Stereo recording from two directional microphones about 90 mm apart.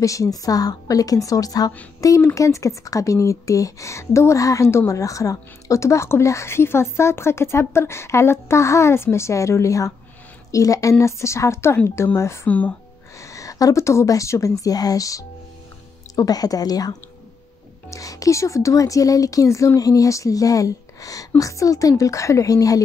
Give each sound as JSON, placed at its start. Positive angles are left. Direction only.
{"t": 0.0, "sound": "speech", "side_deg": 40}
{"t": 12.4, "sound": "speech", "side_deg": 15}
{"t": 13.2, "sound": "a woman's voice", "side_deg": 35}